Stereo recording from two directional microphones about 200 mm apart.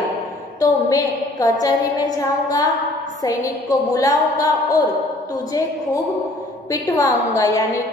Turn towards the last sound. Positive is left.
turn(degrees=15)  # may be behind; listen again after turning